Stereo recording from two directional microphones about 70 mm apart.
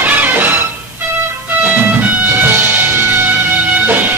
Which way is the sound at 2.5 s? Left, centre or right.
Right.